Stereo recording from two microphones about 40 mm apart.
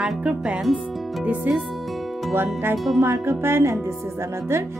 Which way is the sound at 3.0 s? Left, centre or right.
Right.